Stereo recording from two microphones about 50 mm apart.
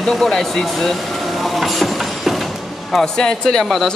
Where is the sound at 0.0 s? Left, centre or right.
Centre.